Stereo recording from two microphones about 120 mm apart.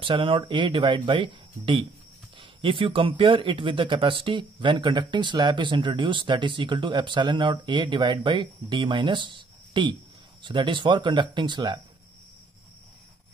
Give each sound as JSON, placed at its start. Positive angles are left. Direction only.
{"t": 0.0, "sound": "speech", "side_deg": -45}